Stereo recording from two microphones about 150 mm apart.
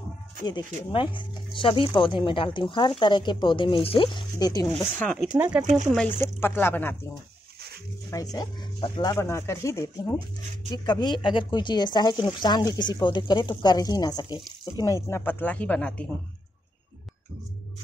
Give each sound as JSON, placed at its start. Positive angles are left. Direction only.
{"t": 0.5, "sound": "speech", "side_deg": 30}
{"t": 4.9, "sound": "speech", "side_deg": 10}
{"t": 5.4, "sound": "speech", "side_deg": -10}
{"t": 5.9, "sound": "speech", "side_deg": 15}
{"t": 8.1, "sound": "speech", "side_deg": 25}